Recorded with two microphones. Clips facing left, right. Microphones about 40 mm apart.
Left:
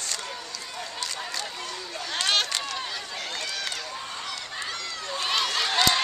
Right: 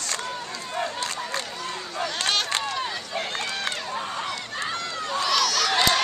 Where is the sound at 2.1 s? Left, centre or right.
Centre.